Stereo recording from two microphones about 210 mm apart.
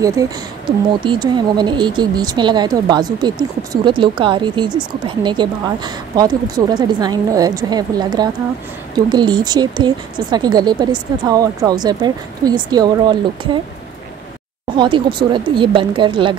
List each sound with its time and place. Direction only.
0.2 s speech: 15° right (ahead or behind)
14.8 s speech: 25° right (ahead or behind)